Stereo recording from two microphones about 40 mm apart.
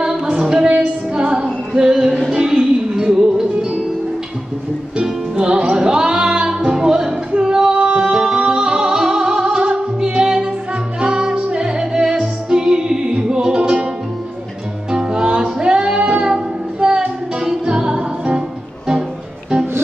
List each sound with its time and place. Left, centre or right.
0.0 s female singing: centre
1.7 s a sound: centre
2.4 s music: centre
5.3 s music: right
7.7 s music: right
14.9 s music: centre